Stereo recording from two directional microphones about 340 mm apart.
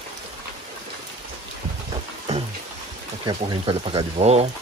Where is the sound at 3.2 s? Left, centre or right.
Centre.